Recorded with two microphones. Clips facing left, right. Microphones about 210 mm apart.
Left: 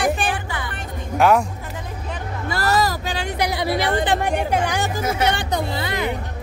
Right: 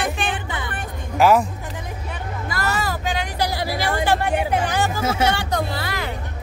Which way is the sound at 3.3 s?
20° left (ahead or behind).